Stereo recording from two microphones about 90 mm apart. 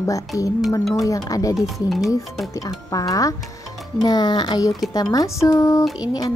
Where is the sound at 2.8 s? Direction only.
40° left (ahead or behind).